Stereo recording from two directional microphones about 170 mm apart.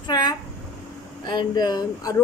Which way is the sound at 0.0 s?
25° left (ahead or behind).